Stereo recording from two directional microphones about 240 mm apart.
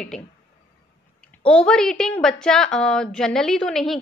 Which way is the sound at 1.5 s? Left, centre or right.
Centre.